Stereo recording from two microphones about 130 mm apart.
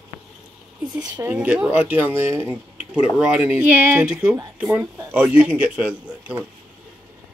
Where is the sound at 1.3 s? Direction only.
10° right (ahead or behind).